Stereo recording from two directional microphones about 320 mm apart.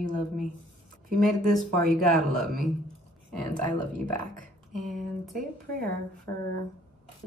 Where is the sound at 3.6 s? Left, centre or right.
Right.